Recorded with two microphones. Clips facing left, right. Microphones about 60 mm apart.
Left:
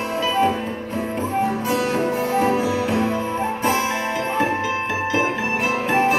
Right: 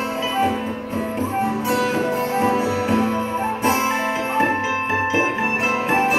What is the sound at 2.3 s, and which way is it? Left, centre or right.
Music, centre.